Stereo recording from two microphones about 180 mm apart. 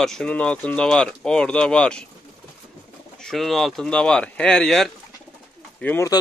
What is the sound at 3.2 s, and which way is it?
A man's voice, centre (ahead or behind).